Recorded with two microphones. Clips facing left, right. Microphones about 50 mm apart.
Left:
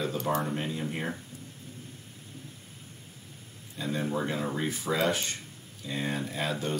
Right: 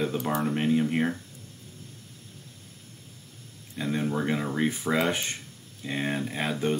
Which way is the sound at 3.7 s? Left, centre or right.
Right.